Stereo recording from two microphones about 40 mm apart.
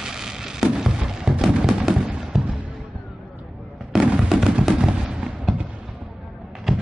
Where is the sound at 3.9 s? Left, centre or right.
Centre.